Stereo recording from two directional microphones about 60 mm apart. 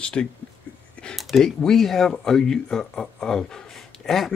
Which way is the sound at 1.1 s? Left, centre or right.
Centre.